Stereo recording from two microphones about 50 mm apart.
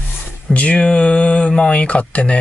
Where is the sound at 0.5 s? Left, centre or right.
Left.